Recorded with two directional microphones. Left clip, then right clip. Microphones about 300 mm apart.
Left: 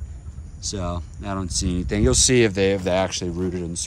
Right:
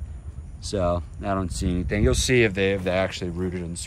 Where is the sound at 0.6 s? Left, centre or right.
Centre.